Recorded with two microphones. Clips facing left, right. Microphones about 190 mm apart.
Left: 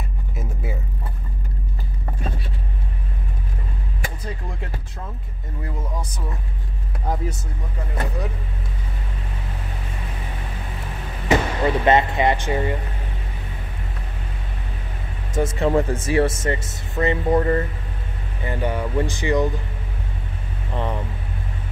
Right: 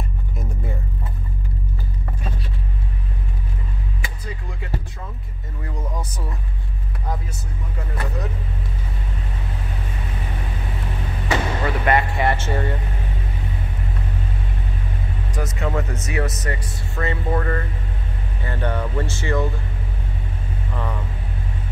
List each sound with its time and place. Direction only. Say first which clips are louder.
0.4 s vehicle: left 1 dB; 5° left (ahead or behind)
11.2 s vehicle: left 4 dB; 20° left (ahead or behind)
15.3 s speech: left 6 dB; 30° left (ahead or behind)
20.7 s speech: left 4 dB; 25° left (ahead or behind)